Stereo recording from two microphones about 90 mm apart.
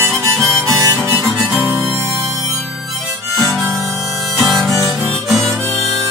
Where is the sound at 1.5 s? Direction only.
15° right (ahead or behind).